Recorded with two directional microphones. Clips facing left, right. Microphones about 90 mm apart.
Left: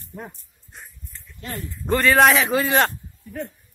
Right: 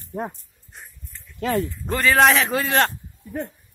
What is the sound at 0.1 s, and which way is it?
Speech, 40° right (ahead or behind).